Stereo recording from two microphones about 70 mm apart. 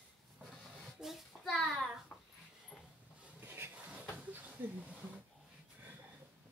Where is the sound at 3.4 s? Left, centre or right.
Right.